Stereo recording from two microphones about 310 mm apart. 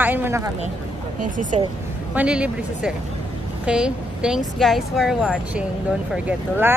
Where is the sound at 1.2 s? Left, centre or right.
Right.